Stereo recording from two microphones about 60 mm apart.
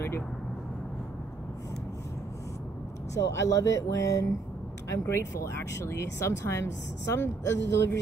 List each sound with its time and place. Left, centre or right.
3.3 s speech: left
4.8 s speech: left